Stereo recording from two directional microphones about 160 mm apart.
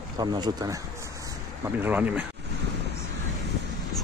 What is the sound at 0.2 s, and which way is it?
Speech, 25° right (ahead or behind).